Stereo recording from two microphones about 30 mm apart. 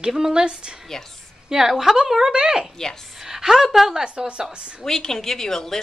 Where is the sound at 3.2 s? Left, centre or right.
Centre.